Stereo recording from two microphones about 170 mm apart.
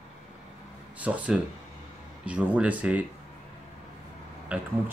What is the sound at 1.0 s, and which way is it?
Speech, 10° right (ahead or behind).